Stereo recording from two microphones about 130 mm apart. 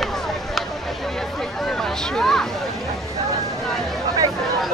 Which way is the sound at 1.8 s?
5° left (ahead or behind).